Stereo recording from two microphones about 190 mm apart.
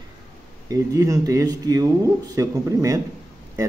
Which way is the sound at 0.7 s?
15° right (ahead or behind).